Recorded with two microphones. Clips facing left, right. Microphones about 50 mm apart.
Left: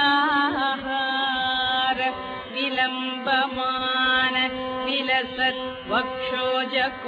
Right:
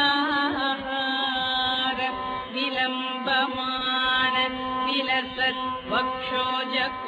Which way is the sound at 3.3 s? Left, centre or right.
Centre.